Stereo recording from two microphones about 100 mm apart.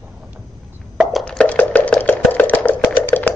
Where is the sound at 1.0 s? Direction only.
Centre (ahead or behind).